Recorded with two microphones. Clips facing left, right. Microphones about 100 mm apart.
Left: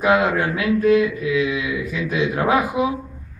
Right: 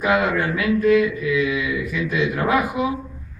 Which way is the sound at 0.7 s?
25° left (ahead or behind).